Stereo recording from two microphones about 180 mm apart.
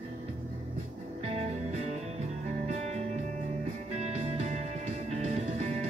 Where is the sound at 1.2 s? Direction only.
35° right (ahead or behind).